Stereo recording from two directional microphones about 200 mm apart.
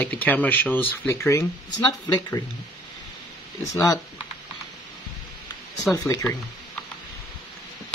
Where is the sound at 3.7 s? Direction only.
15° left (ahead or behind).